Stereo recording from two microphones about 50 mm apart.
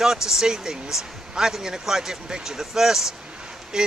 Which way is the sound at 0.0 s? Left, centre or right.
Centre.